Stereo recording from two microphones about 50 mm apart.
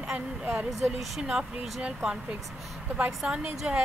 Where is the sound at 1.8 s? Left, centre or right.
Centre.